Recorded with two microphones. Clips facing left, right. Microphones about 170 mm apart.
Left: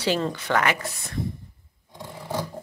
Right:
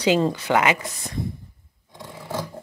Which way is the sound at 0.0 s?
15° right (ahead or behind).